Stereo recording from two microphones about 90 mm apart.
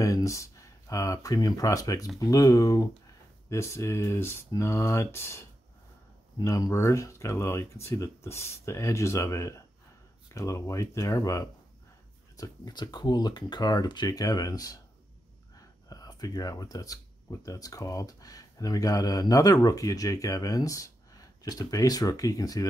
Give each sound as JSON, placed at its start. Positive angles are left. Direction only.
{"t": 0.0, "sound": "speech", "side_deg": 35}
{"t": 6.4, "sound": "speech", "side_deg": 35}
{"t": 12.4, "sound": "speech", "side_deg": 50}